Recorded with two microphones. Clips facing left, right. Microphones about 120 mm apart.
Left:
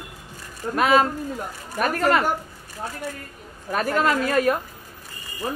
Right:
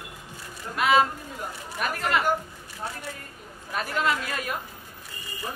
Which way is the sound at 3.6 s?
45° left (ahead or behind).